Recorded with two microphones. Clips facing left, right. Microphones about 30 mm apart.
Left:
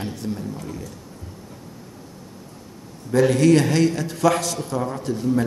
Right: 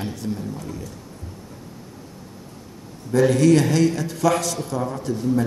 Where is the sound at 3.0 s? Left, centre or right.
Centre.